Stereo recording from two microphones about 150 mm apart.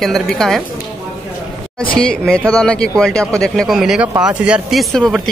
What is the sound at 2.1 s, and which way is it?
Speech, 5° left (ahead or behind).